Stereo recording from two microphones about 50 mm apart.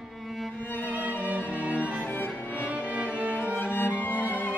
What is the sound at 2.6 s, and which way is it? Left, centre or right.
Music, right.